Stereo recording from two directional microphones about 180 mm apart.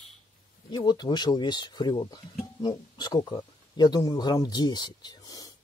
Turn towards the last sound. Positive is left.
turn(degrees=20)  # may be behind; listen again after turning